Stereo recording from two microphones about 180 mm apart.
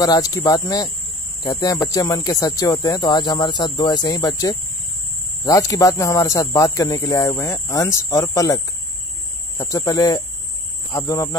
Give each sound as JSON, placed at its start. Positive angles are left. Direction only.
{"t": 0.0, "sound": "speech", "side_deg": 20}